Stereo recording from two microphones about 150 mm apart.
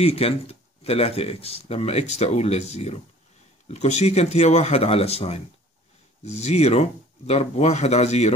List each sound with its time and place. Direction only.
0.0 s speech: 45° left (ahead or behind)